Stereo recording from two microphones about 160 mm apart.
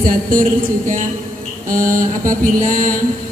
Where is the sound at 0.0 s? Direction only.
60° right (ahead or behind).